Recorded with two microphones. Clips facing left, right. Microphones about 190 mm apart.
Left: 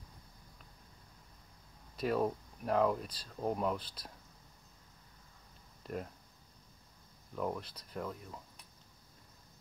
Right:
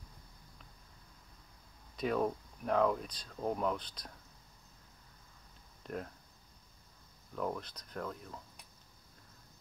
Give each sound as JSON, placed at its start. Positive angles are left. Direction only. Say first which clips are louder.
{"t": 2.0, "sound": "speech", "louder": "even", "side_deg": 5}
{"t": 7.3, "sound": "speech", "louder": "even", "side_deg": 5}